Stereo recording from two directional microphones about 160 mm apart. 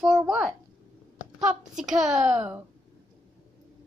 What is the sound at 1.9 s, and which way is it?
Speech, centre (ahead or behind).